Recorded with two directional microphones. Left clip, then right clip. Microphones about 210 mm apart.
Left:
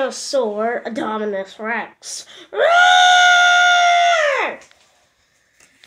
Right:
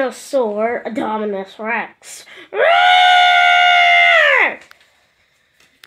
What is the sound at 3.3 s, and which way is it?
Alarm, 35° right (ahead or behind).